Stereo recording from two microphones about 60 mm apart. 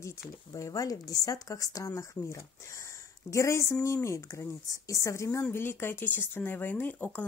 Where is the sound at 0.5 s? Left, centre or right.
Left.